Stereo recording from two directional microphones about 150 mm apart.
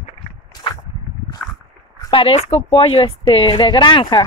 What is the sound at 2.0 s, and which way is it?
A woman's voice, 35° left (ahead or behind).